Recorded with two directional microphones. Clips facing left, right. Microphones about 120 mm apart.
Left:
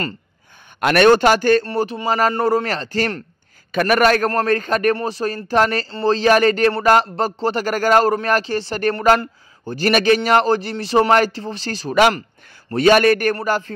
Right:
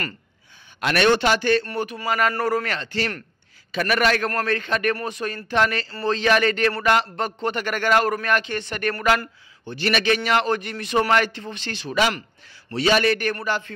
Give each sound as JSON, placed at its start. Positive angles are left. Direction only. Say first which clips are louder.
{"t": 0.7, "sound": "a man's voice", "louder": "left 6 dB", "side_deg": 50}
{"t": 1.7, "sound": "a man's voice", "louder": "left 5 dB", "side_deg": 30}
{"t": 12.7, "sound": "a man's voice", "louder": "left 7 dB", "side_deg": 50}